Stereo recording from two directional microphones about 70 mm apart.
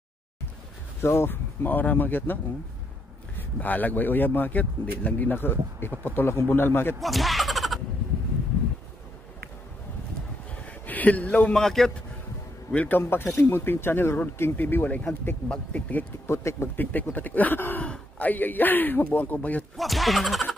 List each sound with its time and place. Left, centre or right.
1.0 s speech: left
3.3 s speech: left
7.0 s a sound: centre
10.5 s a sound: left
11.6 s speech: centre
12.7 s speech: left
13.0 s speech: left
16.3 s speech: left
16.7 s a man's voice: left
19.8 s speech: centre